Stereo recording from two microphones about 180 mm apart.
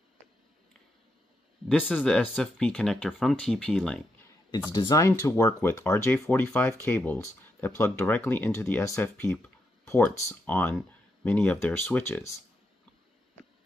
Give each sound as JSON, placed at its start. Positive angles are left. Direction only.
{"t": 1.7, "sound": "speech", "side_deg": 10}
{"t": 4.7, "sound": "speech", "side_deg": 20}